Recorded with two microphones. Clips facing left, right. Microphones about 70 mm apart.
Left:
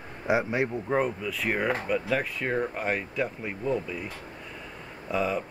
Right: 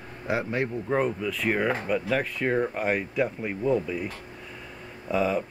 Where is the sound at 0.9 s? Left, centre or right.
Centre.